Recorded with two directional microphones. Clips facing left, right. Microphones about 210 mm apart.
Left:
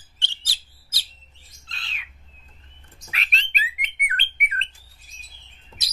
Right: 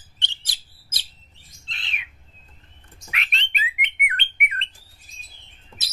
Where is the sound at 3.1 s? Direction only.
35° left (ahead or behind).